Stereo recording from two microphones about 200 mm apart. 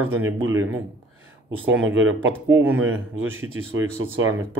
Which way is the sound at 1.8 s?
75° right (ahead or behind).